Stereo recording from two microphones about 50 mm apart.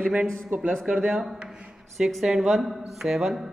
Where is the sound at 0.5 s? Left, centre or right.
Right.